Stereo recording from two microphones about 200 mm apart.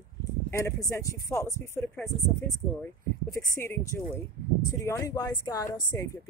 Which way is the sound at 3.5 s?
15° left (ahead or behind).